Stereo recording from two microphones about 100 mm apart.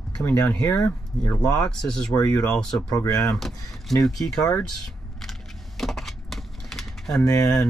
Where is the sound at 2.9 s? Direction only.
40° left (ahead or behind).